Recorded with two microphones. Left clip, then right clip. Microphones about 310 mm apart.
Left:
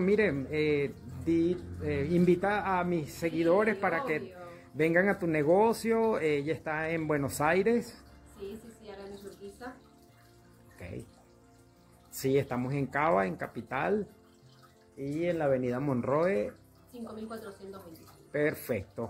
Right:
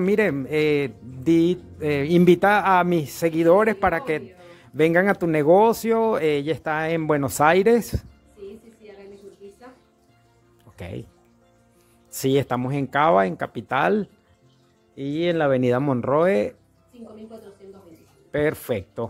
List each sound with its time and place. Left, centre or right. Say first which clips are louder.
0.0 s speech: right 7 dB; right
12.2 s speech: right 8 dB; right
15.0 s speech: right 9 dB; right
18.3 s speech: right 7 dB; right